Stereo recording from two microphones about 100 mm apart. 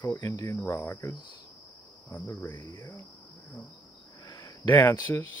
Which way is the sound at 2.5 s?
45° left (ahead or behind).